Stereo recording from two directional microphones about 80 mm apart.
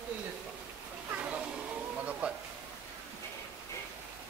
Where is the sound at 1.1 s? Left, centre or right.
Centre.